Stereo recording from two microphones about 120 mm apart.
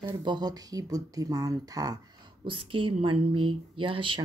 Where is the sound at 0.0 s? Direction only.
40° right (ahead or behind).